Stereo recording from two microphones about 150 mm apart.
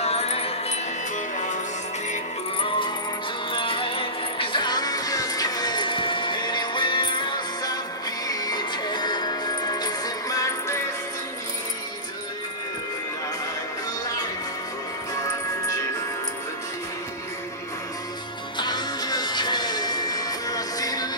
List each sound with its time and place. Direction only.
0.0 s music: 45° left (ahead or behind)
3.5 s music: 35° left (ahead or behind)
18.6 s music: 30° left (ahead or behind)